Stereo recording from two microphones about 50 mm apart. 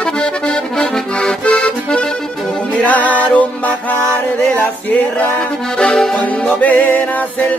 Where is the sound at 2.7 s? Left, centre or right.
Left.